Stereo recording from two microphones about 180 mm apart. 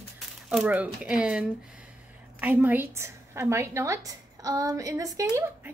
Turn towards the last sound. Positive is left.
turn(degrees=-15)  # may be behind; listen again after turning